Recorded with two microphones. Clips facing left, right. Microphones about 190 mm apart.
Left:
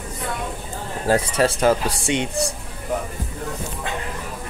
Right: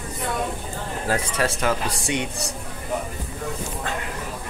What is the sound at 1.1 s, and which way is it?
Speech, 30° left (ahead or behind).